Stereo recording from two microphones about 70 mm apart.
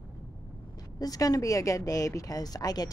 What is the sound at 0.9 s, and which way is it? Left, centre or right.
Speech, left.